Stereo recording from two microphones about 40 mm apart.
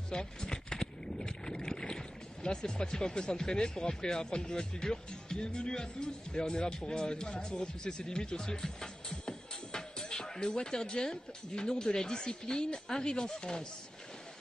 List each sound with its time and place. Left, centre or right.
0.1 s speech: centre